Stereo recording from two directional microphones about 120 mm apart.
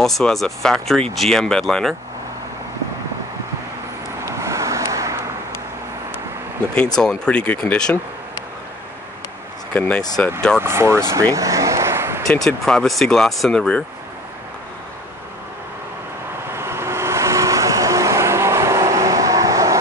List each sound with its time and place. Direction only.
0.0 s speech: 5° left (ahead or behind)
4.3 s vehicle: 25° right (ahead or behind)
7.0 s speech: 5° left (ahead or behind)
9.8 s speech: 15° left (ahead or behind)
10.6 s speech: 20° right (ahead or behind)
11.3 s vehicle: 30° right (ahead or behind)
12.3 s speech: 5° left (ahead or behind)
16.5 s vehicle: 20° right (ahead or behind)